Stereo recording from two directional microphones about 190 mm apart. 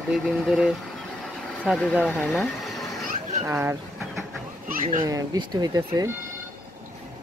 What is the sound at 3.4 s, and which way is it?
Speech, 10° right (ahead or behind).